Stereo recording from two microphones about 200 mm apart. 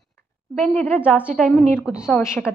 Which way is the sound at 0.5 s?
5° left (ahead or behind).